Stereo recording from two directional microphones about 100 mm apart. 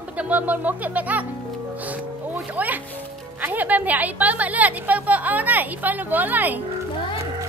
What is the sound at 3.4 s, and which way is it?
A woman's voice, 15° right (ahead or behind).